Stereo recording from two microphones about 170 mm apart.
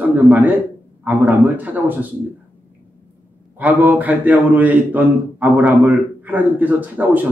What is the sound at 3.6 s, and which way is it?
Speech, 10° right (ahead or behind).